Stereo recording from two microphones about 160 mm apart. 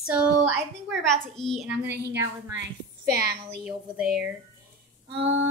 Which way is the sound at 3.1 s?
80° right.